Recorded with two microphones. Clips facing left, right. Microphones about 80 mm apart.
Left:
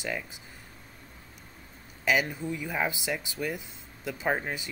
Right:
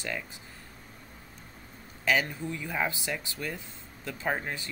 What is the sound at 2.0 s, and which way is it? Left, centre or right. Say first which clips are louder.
Speech: left 1 dB; centre.